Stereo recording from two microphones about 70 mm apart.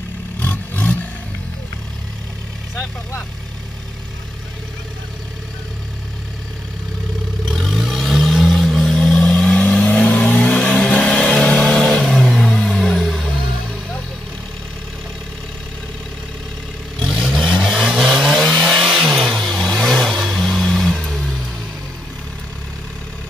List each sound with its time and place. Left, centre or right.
0.4 s roar: left
7.5 s vehicle: centre
17.1 s vehicle: centre